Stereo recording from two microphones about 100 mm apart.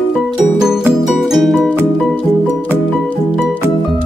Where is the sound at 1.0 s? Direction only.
Centre (ahead or behind).